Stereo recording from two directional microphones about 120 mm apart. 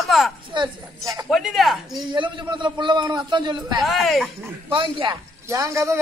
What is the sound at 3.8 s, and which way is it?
Speech, centre (ahead or behind).